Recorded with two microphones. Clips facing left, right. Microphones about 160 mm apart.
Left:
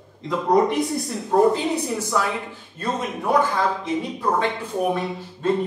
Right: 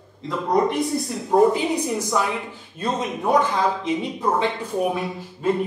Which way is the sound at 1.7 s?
15° right (ahead or behind).